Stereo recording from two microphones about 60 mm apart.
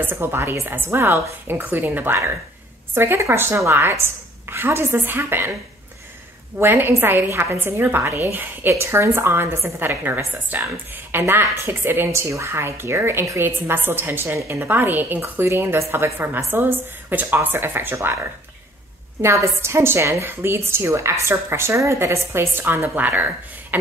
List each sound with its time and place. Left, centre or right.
0.0 s a woman's voice: right
6.6 s a woman's voice: right
8.7 s a woman's voice: right
12.1 s a woman's voice: right
17.1 s a woman's voice: right
19.2 s a woman's voice: right
22.6 s a woman's voice: right
22.9 s speech: right